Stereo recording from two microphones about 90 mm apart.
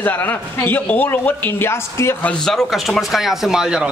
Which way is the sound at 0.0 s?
20° left (ahead or behind).